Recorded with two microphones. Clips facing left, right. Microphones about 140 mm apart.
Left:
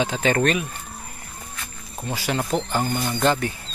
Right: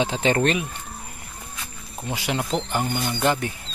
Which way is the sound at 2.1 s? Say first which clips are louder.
Left 1 dB; 20° right (ahead or behind).